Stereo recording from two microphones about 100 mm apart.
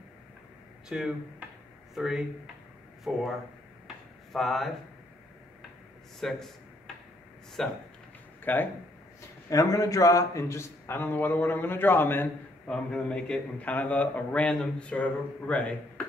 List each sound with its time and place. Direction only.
0.8 s speech: 5° right (ahead or behind)
3.8 s a sound: centre (ahead or behind)
6.1 s a man's voice: centre (ahead or behind)
7.6 s a man's voice: 5° left (ahead or behind)
8.5 s a man's voice: 20° left (ahead or behind)
9.5 s a man's voice: 35° left (ahead or behind)
12.6 s a man's voice: 10° left (ahead or behind)